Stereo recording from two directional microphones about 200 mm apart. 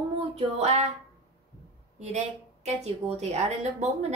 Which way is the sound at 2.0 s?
35° right (ahead or behind).